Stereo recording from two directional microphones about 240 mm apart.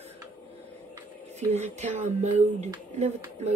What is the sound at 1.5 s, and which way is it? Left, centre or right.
Speech, right.